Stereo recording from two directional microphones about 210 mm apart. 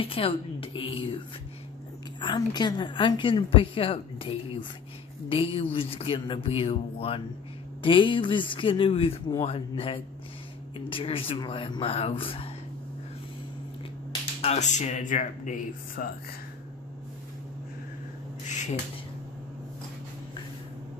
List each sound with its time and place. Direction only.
0.0 s a woman's voice: 25° left (ahead or behind)
2.1 s a woman's voice: 20° left (ahead or behind)
14.4 s speech: 30° left (ahead or behind)
18.5 s a sound: 35° left (ahead or behind)